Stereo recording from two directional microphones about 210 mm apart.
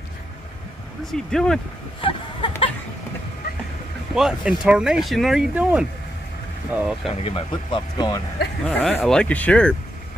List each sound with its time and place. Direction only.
1.1 s speech: 5° left (ahead or behind)
2.0 s a sound: 25° left (ahead or behind)
4.1 s speech: centre (ahead or behind)
7.1 s speech: 25° left (ahead or behind)
8.6 s speech: 5° left (ahead or behind)